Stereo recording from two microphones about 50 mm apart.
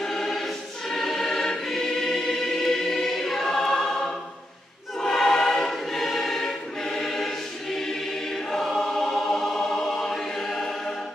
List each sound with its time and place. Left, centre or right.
0.0 s choir: centre